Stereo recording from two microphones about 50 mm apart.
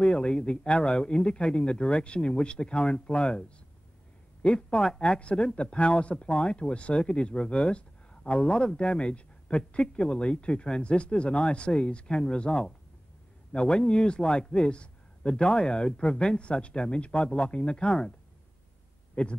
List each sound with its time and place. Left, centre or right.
0.0 s speech: centre
19.2 s speech: left